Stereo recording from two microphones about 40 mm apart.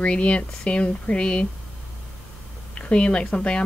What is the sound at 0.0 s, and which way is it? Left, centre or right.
A woman's voice, left.